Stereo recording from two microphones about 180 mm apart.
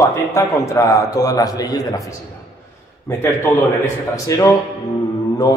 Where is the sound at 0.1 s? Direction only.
15° left (ahead or behind).